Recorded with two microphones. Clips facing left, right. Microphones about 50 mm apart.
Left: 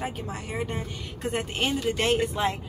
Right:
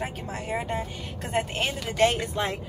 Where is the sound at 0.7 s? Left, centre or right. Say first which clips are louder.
Right 3 dB; centre.